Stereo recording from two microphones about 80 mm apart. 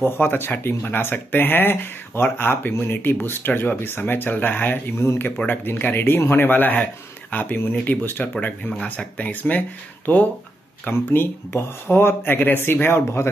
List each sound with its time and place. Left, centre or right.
0.0 s speech: left